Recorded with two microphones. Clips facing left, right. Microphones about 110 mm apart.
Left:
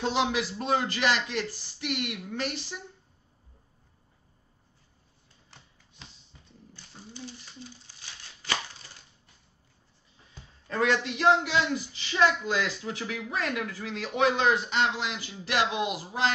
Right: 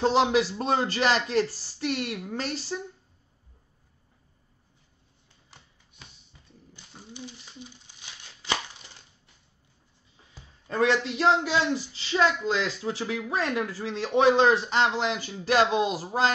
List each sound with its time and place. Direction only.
0.0 s a man's voice: 40° right (ahead or behind)
6.7 s crumpling: 15° right (ahead or behind)
10.7 s a man's voice: 25° right (ahead or behind)